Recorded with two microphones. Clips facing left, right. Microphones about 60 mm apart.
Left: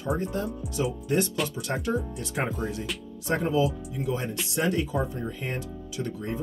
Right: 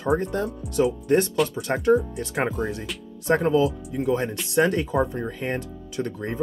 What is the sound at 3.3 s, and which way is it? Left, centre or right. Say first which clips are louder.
Speech: right 5 dB; right.